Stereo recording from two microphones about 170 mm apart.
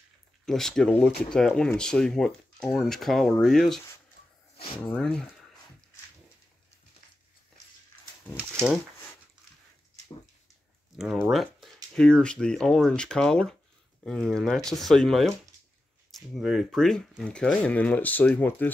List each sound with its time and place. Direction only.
0.5 s speech: 5° left (ahead or behind)
4.6 s speech: 30° left (ahead or behind)
4.9 s speech: 5° left (ahead or behind)
8.5 s speech: centre (ahead or behind)
11.0 s speech: centre (ahead or behind)